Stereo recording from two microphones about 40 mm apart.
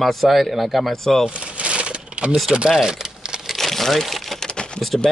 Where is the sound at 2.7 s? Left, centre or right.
Centre.